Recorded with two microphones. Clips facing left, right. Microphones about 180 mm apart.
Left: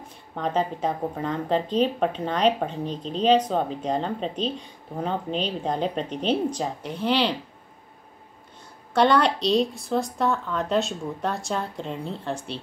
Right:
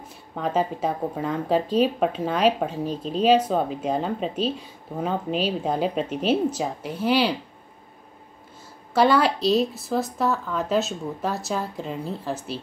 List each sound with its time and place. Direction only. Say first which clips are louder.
0.4 s speech: right 1 dB; 5° right (ahead or behind)
8.9 s speech: right 1 dB; 5° right (ahead or behind)